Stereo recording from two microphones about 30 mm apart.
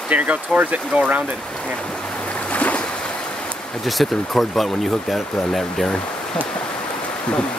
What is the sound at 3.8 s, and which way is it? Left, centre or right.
Speech, centre.